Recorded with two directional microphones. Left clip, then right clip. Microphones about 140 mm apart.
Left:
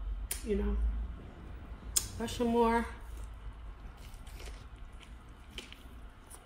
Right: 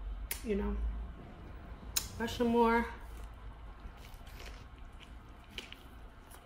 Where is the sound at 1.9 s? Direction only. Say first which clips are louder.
Left 1 dB; 10° right (ahead or behind).